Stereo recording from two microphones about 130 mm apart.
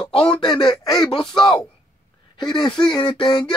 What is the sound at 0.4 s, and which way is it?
Speech, 35° left (ahead or behind).